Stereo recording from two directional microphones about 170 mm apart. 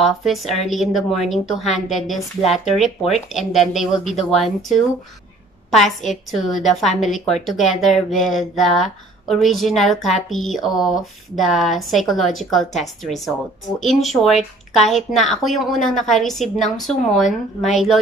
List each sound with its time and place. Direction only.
0.0 s a woman's voice: centre (ahead or behind)